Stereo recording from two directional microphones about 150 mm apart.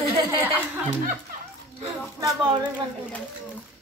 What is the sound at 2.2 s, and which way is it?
Speech, 30° right (ahead or behind).